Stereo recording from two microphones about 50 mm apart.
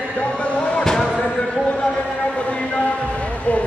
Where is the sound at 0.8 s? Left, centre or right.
Centre.